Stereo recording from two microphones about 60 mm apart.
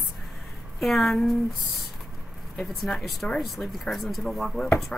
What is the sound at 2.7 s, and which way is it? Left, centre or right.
Speech, centre.